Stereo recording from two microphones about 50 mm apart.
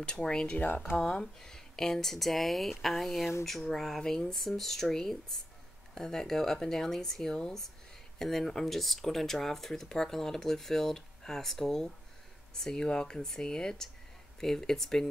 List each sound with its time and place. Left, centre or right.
0.0 s speech: centre
0.6 s speech: left
0.9 s speech: centre